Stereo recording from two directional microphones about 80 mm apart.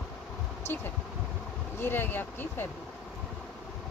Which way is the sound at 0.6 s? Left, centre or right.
Left.